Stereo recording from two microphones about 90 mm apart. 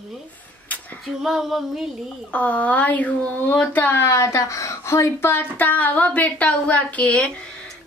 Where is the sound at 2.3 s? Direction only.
15° left (ahead or behind).